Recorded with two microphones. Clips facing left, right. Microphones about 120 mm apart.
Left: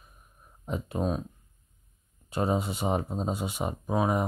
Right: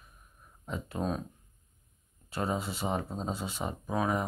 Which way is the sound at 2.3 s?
20° left (ahead or behind).